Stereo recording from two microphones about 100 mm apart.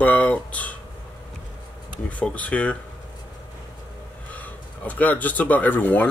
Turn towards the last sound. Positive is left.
turn(degrees=15)  # may be behind; listen again after turning